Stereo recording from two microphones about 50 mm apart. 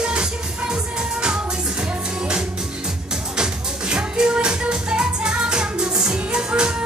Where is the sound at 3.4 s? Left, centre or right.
Centre.